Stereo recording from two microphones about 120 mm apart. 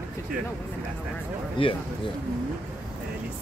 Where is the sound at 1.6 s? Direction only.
45° left (ahead or behind).